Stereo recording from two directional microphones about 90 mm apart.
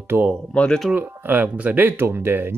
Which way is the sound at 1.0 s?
25° right (ahead or behind).